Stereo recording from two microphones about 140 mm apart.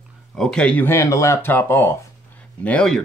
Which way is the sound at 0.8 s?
20° left (ahead or behind).